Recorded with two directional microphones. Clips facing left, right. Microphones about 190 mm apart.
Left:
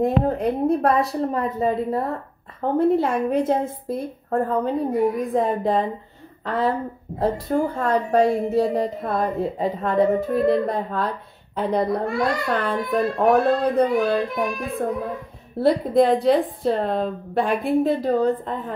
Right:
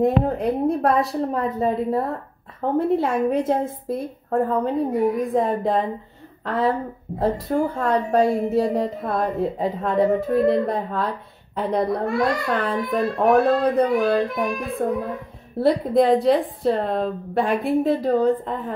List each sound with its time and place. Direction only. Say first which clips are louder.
0.0 s a woman's voice: right 1 dB; centre (ahead or behind)